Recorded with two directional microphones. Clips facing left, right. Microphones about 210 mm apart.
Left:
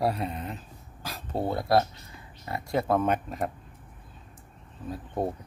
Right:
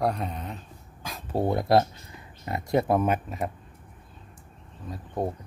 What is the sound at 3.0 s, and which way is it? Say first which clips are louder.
Speech: right 1 dB; 5° right (ahead or behind).